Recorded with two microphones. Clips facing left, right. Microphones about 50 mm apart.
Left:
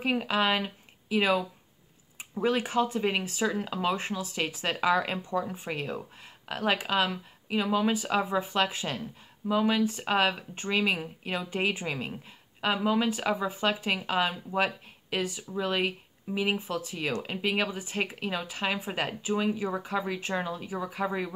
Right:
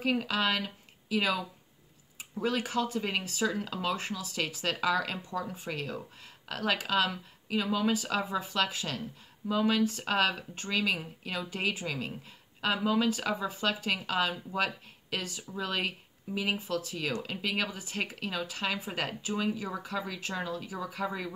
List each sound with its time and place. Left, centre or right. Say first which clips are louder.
0.0 s speech: left 2 dB; left
12.5 s speech: left 2 dB; centre